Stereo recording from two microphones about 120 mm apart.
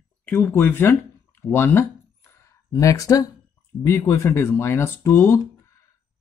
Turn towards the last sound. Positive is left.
turn(degrees=20)  # may be behind; listen again after turning